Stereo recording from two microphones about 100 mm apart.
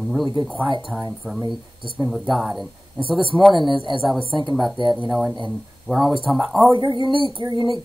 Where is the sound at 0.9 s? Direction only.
15° right (ahead or behind).